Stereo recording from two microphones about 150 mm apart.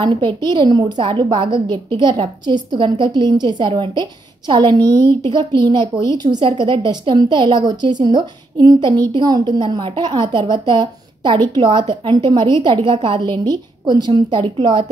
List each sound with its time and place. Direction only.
0.0 s a woman's voice: 30° right (ahead or behind)